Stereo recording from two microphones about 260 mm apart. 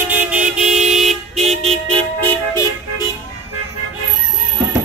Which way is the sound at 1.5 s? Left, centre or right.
Right.